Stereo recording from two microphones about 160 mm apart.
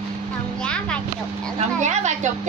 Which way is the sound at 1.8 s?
45° right (ahead or behind).